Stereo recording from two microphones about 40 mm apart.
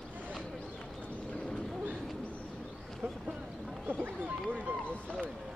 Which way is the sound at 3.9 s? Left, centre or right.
Right.